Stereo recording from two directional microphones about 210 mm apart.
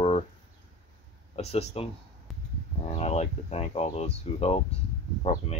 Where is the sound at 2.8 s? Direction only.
30° left (ahead or behind).